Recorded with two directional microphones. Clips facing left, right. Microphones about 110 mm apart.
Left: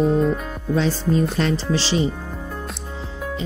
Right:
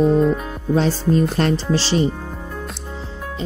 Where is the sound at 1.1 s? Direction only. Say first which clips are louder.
Right 3 dB; 50° right (ahead or behind).